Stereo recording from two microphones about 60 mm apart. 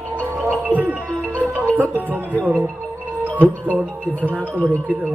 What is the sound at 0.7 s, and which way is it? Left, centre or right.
Music, right.